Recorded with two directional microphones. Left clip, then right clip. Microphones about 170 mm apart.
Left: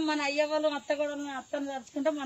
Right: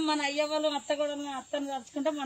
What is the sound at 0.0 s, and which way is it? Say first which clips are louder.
Speech: even; centre (ahead or behind).